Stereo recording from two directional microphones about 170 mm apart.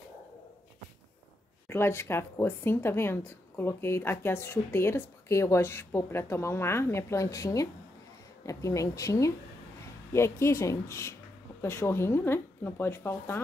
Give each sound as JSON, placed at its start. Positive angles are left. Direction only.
{"t": 1.7, "sound": "speech", "side_deg": 15}